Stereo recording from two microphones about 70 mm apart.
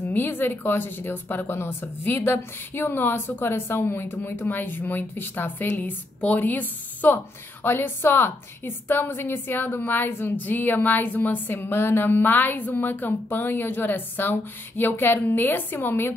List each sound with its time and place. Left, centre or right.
0.1 s a woman's voice: left